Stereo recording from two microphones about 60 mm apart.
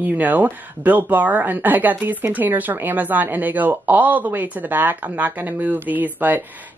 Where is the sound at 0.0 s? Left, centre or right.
Right.